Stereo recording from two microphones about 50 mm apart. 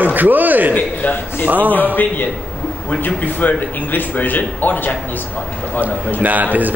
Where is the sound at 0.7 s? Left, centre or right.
Left.